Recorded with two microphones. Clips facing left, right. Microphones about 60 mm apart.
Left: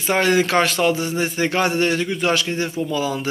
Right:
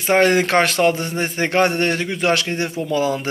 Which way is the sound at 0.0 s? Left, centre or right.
Right.